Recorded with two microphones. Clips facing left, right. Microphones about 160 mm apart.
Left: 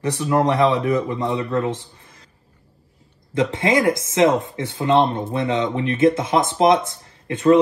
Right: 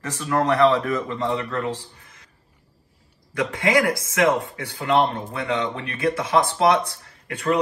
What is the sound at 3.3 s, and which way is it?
Speech, 25° left (ahead or behind).